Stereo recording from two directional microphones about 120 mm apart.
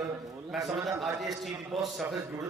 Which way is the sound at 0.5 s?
Centre (ahead or behind).